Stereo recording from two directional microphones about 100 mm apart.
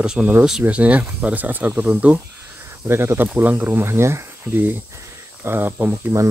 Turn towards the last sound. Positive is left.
turn(degrees=-20)  # may be behind; listen again after turning